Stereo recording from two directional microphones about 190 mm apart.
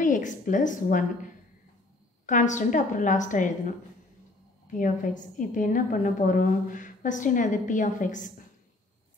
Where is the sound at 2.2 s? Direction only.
40° left (ahead or behind).